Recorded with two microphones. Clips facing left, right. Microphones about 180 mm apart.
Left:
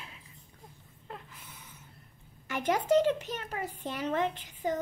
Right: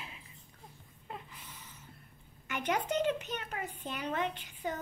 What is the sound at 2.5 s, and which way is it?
A child's voice, 30° left (ahead or behind).